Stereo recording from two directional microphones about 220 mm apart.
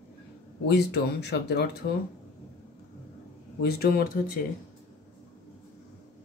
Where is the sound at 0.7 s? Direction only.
50° left (ahead or behind).